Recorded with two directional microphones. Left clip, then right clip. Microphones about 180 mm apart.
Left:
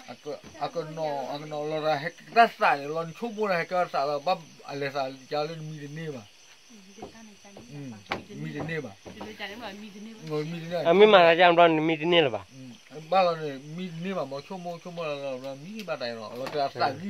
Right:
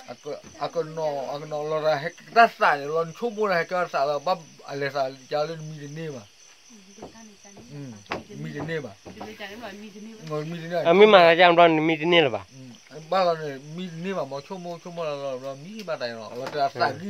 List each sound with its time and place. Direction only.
0.2 s speech: 50° right (ahead or behind)
9.4 s speech: 55° left (ahead or behind)
10.2 s speech: 50° right (ahead or behind)
10.8 s speech: 10° right (ahead or behind)
13.1 s speech: 55° right (ahead or behind)